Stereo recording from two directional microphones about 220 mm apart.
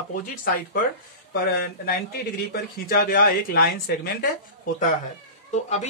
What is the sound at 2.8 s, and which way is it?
Speech, 40° left (ahead or behind).